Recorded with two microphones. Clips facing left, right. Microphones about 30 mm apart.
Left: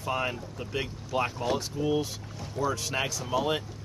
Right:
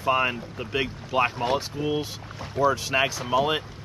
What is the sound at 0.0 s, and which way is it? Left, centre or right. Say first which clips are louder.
Speech: right 7 dB; right.